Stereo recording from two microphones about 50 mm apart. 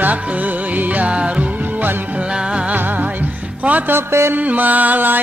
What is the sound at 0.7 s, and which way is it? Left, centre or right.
Music, right.